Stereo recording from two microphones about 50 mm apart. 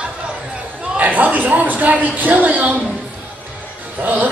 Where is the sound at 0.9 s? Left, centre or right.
Right.